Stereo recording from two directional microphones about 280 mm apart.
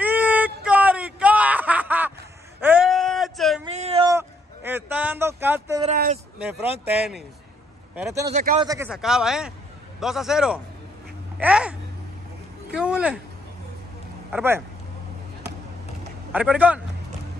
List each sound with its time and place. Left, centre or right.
0.0 s a sound: centre
3.6 s a sound: right
5.9 s a sound: right
7.9 s speech: centre
8.3 s speech: right
8.8 s speech: centre
12.7 s speech: centre
14.3 s speech: centre
16.3 s a man's voice: centre